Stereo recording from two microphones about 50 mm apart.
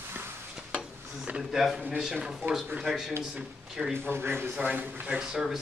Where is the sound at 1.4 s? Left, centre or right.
Centre.